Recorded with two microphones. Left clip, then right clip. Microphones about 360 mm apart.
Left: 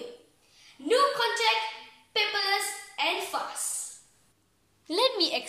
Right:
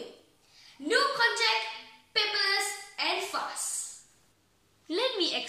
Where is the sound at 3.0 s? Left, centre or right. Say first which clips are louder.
Left 3 dB; centre.